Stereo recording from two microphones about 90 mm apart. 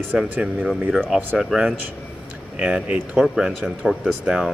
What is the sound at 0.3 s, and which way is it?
Speech, 10° right (ahead or behind).